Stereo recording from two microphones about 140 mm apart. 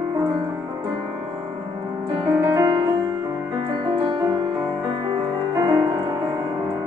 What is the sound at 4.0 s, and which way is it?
Music, 25° right (ahead or behind).